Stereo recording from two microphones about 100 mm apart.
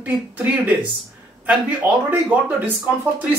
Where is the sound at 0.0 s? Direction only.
15° right (ahead or behind).